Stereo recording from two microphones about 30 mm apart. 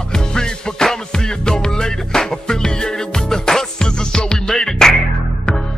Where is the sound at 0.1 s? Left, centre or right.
Left.